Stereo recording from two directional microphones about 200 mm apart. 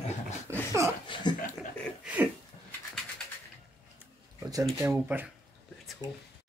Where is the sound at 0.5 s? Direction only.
15° right (ahead or behind).